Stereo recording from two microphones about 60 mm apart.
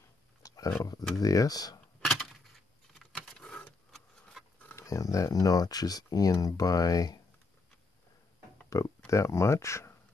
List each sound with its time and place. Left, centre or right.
0.4 s a sound: left
1.2 s speech: left
2.0 s a sound: centre
2.9 s keys jangling: centre
3.2 s power windows: centre
3.9 s keys jangling: centre
4.7 s speech: left
8.6 s speech: left